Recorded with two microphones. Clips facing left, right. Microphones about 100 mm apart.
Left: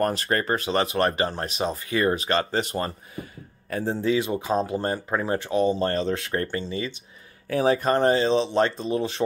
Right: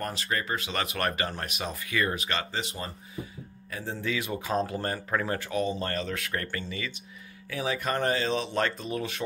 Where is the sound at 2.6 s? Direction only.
60° left (ahead or behind).